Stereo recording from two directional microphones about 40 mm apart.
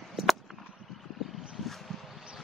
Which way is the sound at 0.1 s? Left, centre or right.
Centre.